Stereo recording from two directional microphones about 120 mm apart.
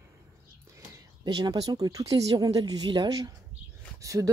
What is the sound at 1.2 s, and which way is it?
Speech, 40° right (ahead or behind).